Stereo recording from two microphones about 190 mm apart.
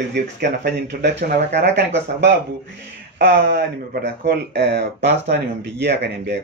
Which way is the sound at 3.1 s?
55° right (ahead or behind).